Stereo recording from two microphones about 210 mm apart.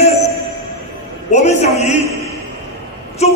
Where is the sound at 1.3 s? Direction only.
35° left (ahead or behind).